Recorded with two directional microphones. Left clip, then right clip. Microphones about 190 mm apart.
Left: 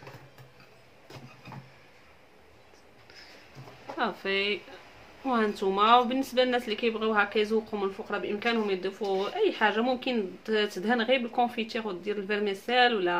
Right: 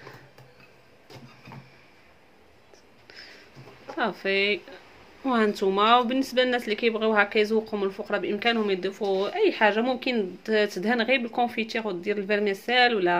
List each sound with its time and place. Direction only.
3.9 s speech: 25° right (ahead or behind)